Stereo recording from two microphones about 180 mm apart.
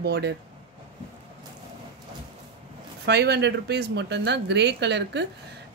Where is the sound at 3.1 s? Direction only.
65° right (ahead or behind).